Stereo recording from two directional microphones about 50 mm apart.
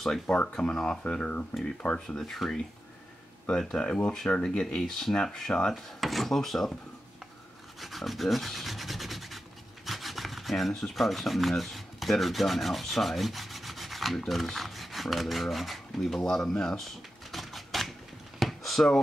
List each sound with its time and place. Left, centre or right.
0.3 s speech: centre
2.0 s speech: centre
3.4 s speech: centre
5.9 s speech: centre
7.8 s rub: centre
18.4 s a sound: centre